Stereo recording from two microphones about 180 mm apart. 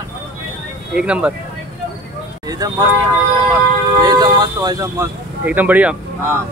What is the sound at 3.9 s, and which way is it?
Speech, 20° right (ahead or behind).